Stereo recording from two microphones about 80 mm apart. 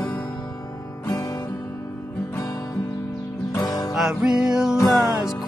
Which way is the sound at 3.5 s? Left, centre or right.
Left.